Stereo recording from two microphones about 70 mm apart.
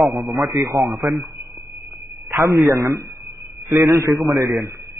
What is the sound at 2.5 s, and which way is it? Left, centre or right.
Speech, right.